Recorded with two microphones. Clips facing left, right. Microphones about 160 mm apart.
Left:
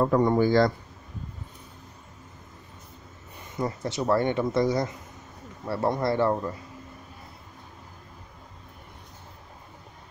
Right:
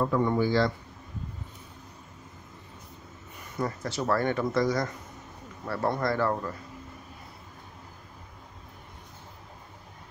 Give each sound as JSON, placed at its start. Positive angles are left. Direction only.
{"t": 0.0, "sound": "speech", "side_deg": 40}
{"t": 3.5, "sound": "speech", "side_deg": 20}